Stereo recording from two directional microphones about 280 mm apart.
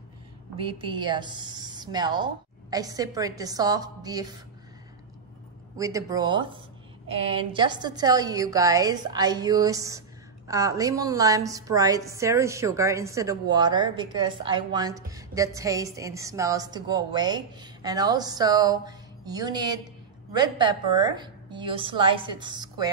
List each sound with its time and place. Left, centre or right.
0.6 s a woman's voice: centre
5.8 s a woman's voice: centre